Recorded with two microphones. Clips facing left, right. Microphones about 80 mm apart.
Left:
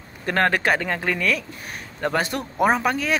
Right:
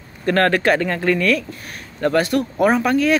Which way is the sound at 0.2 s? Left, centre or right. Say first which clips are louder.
Right 4 dB; centre.